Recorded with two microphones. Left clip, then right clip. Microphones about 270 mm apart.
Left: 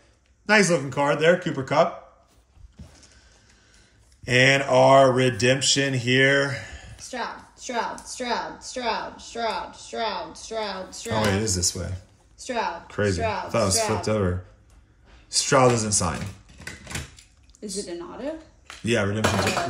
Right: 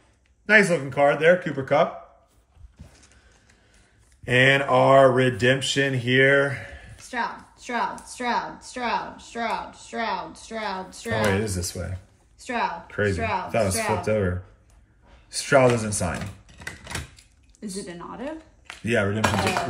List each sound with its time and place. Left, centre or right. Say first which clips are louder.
0.5 s speech: right 1 dB; centre
4.2 s speech: even; centre
7.1 s speech: right 3 dB; right
11.2 s speech: left 1 dB; centre
12.4 s speech: right 1 dB; right
12.8 s speech: even; centre
16.5 s a sound: right 1 dB; centre
17.8 s speech: left 2 dB; right
18.9 s speech: right 1 dB; centre